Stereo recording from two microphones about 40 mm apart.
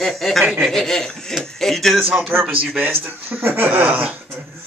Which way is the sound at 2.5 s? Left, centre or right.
Right.